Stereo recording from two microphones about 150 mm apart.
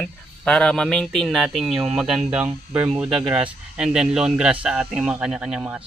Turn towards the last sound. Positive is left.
turn(degrees=-10)  # may be behind; listen again after turning